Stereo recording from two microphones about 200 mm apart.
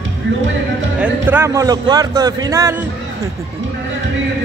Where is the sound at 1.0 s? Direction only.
10° right (ahead or behind).